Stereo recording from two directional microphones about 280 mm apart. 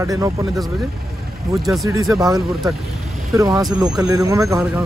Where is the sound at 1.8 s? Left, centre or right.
Centre.